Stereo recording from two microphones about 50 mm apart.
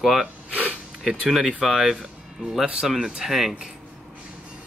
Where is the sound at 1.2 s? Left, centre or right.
Centre.